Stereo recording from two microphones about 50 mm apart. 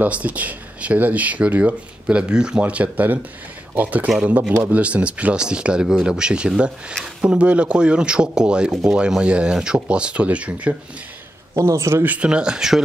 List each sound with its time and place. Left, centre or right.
0.0 s speech: right
2.6 s speech: right
11.5 s speech: right
12.2 s speech: centre